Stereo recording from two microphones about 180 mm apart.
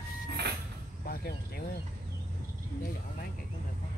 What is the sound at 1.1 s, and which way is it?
Speech, 55° left (ahead or behind).